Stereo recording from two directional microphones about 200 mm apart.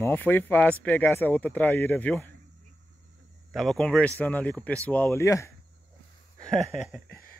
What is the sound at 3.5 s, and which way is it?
A man's voice, centre (ahead or behind).